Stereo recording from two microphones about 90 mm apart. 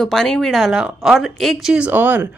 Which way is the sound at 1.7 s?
15° right (ahead or behind).